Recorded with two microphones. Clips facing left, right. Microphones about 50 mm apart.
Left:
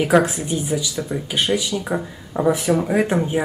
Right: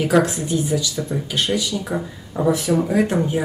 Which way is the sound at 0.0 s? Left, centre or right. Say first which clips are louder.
Left 1 dB; centre.